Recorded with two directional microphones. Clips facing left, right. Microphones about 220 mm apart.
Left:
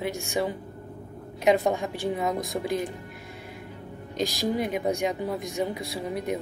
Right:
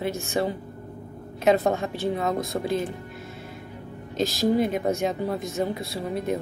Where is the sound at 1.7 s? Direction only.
15° left (ahead or behind).